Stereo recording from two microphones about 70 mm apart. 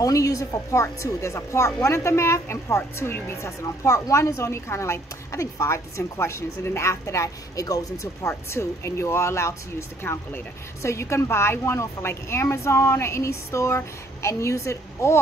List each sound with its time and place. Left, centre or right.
0.0 s speech: left
8.2 s speech: left